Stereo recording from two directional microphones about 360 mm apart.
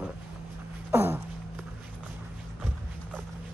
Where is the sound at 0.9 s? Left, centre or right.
Centre.